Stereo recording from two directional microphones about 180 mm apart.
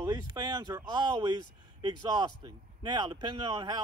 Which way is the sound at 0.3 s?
20° right (ahead or behind).